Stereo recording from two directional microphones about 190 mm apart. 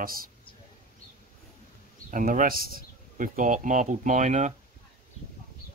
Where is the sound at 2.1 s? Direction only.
45° right (ahead or behind).